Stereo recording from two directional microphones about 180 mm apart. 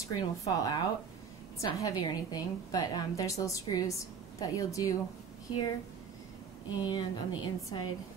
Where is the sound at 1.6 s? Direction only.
20° left (ahead or behind).